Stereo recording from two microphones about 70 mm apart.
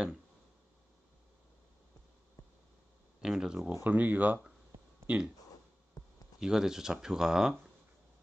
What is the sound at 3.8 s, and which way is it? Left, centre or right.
Speech, right.